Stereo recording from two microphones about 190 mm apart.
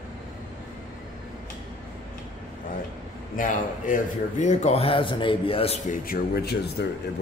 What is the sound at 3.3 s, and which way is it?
A man's voice, 45° left (ahead or behind).